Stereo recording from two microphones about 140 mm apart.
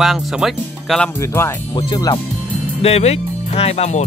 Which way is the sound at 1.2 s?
20° left (ahead or behind).